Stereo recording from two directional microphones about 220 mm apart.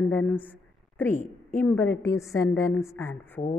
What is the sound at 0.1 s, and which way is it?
A woman's voice, 5° left (ahead or behind).